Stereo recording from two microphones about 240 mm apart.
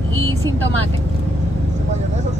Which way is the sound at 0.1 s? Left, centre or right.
Right.